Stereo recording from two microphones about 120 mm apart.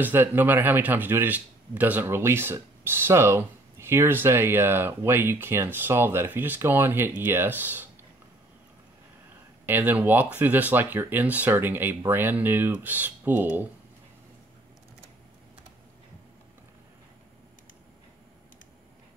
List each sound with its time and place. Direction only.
0.0 s speech: 20° right (ahead or behind)
9.7 s speech: 15° right (ahead or behind)